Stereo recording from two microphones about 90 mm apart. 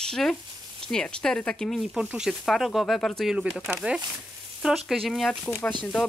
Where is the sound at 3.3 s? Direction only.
10° right (ahead or behind).